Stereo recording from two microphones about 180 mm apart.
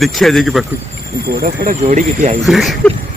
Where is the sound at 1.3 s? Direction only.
55° right (ahead or behind).